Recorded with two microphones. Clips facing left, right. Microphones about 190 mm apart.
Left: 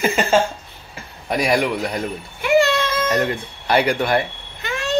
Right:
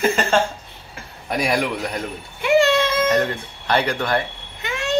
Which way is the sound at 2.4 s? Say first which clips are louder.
Even; 25° right (ahead or behind).